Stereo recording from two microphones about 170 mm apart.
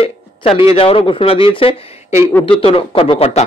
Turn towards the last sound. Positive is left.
turn(degrees=35)  # may be behind; listen again after turning